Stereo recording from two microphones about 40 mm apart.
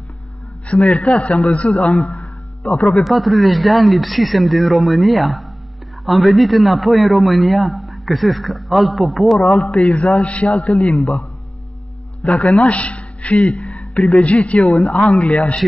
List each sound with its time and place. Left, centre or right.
0.7 s a man's voice: left
2.0 s music: left
2.7 s speech: centre
3.0 s speech: centre
9.6 s a man's voice: left
10.5 s a man's voice: centre
12.3 s a man's voice: left